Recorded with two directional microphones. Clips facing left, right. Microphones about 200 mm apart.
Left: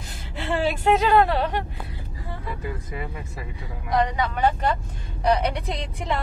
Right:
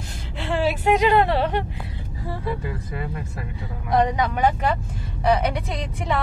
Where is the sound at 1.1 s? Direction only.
25° right (ahead or behind).